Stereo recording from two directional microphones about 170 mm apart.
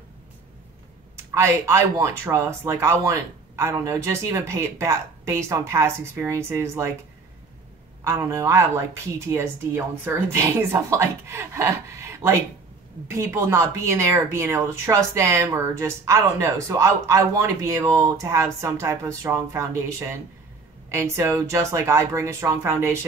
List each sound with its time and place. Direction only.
1.3 s speech: 15° right (ahead or behind)
8.0 s speech: 15° right (ahead or behind)